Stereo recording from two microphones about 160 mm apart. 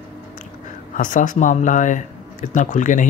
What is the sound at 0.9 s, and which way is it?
Speech, 55° left (ahead or behind).